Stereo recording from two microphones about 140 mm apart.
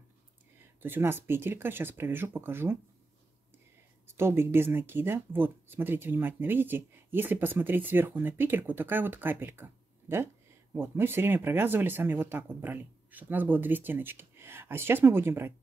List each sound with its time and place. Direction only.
0.6 s speech: 15° right (ahead or behind)
4.1 s speech: 15° right (ahead or behind)